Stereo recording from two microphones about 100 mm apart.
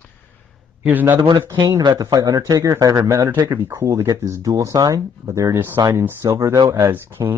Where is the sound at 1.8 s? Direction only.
40° right (ahead or behind).